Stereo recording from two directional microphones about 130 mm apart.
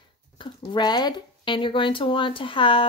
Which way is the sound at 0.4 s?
35° left (ahead or behind).